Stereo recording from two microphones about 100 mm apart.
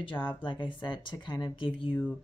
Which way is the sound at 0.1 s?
20° left (ahead or behind).